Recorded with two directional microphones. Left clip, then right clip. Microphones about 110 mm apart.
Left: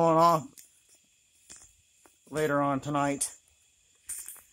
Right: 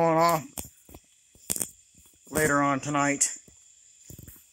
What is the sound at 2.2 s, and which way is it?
Speech, 20° right (ahead or behind).